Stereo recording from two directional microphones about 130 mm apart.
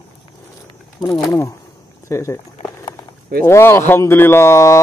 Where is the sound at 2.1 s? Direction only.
20° left (ahead or behind).